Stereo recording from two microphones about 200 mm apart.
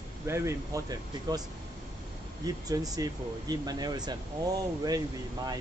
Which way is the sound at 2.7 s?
20° right (ahead or behind).